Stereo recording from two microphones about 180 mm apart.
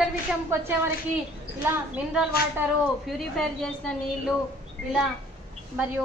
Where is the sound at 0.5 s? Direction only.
15° right (ahead or behind).